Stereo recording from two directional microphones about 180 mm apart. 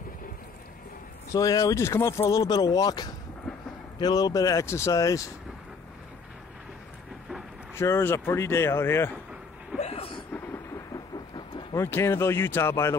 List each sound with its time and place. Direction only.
1.3 s speech: 20° left (ahead or behind)
7.7 s speech: 15° left (ahead or behind)
9.8 s vehicle: 35° left (ahead or behind)
10.3 s thunder: 10° left (ahead or behind)
11.1 s thunder: 25° left (ahead or behind)
11.8 s speech: 15° left (ahead or behind)